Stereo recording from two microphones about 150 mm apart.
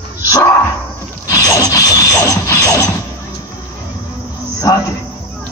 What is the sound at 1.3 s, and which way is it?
Music, 25° left (ahead or behind).